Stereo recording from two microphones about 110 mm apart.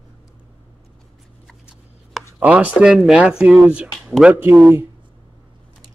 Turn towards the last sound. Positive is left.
turn(degrees=-15)  # may be behind; listen again after turning